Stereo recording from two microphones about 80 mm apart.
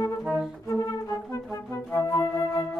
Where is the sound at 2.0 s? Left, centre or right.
Left.